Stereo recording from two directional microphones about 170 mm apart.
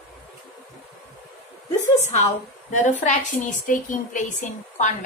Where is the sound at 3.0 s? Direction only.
45° left (ahead or behind).